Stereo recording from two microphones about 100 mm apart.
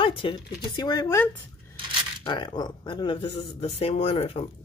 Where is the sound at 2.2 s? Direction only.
50° left (ahead or behind); by 4.5 s 85° left.